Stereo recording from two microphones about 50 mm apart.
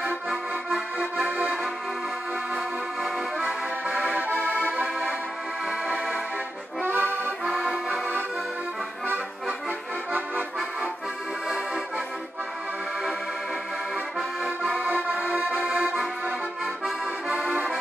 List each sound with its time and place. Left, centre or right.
0.3 s accordion: centre
1.2 s accordion: right
2.5 s music: centre
6.8 s accordion: right
7.4 s accordion: centre
10.1 s accordion: right
11.4 s accordion: centre
14.4 s accordion: centre
14.9 s accordion: right
15.1 s music: centre
17.3 s accordion: centre